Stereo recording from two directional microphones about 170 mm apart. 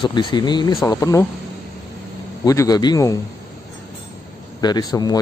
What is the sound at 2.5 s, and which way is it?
Speech, 20° left (ahead or behind).